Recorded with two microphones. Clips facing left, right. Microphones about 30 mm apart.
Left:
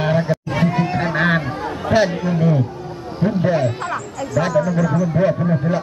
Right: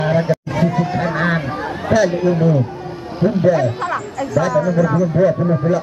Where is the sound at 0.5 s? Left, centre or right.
Left.